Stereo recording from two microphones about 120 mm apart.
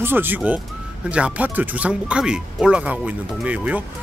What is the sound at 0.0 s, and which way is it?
Speech, 15° right (ahead or behind).